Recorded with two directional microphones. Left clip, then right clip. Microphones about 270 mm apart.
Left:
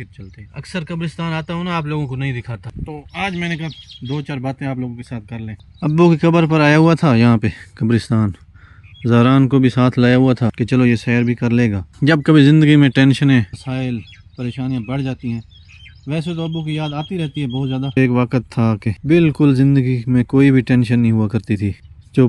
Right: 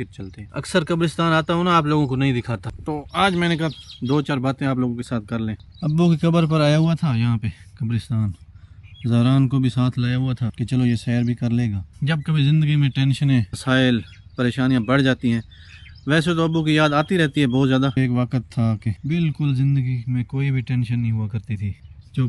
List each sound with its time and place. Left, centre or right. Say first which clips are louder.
0.6 s speech: right 6 dB; centre
5.8 s speech: left 9 dB; centre
8.1 s speech: left 10 dB; left
9.0 s speech: left 8 dB; centre
13.5 s speech: right 6 dB; centre
17.9 s speech: left 7 dB; centre